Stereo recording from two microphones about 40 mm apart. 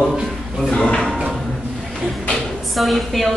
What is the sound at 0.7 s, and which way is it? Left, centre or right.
Drawer open or close, left.